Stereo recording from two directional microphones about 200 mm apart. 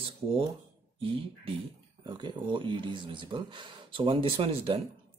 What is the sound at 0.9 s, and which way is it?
Speech, 25° right (ahead or behind).